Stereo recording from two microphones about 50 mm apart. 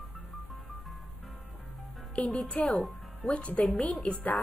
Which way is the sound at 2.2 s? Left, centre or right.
Left.